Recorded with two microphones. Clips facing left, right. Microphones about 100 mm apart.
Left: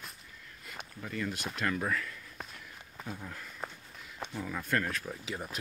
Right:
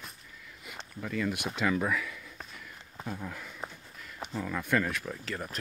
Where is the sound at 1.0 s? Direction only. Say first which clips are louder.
Right 4 dB; centre (ahead or behind).